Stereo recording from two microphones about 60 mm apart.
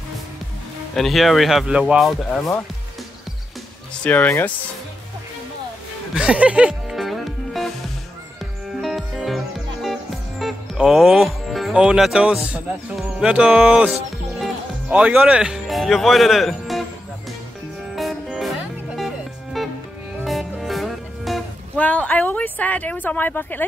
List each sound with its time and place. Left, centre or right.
0.9 s speech: centre
1.7 s speech: centre
4.0 s speech: left
6.1 s speech: centre
6.7 s music: centre
8.8 s music: centre
10.8 s speech: centre
11.7 s speech: centre
17.9 s music: centre
21.7 s a sound: left